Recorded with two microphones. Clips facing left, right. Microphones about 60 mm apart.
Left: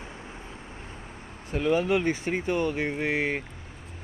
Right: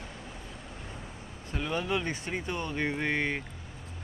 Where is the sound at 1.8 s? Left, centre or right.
Left.